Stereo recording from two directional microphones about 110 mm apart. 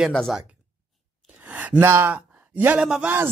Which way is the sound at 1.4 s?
15° right (ahead or behind).